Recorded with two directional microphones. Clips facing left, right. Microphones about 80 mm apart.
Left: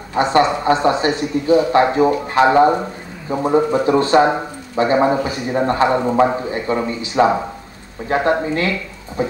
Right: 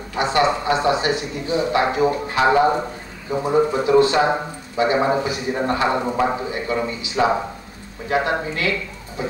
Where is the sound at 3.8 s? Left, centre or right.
Left.